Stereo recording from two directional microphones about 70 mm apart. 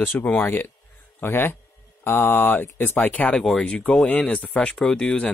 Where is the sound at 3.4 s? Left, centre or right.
Centre.